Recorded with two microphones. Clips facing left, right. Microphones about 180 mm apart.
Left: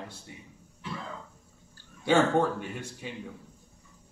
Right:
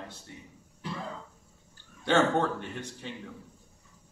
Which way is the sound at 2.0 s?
10° left (ahead or behind).